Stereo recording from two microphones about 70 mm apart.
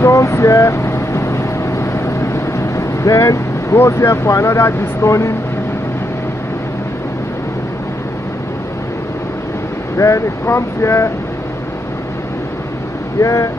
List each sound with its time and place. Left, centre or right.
0.0 s vehicle: left
9.9 s speech: left
13.2 s speech: left